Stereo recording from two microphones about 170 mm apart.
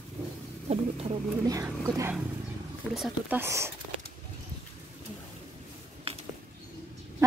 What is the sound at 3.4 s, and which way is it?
Speech, 15° right (ahead or behind).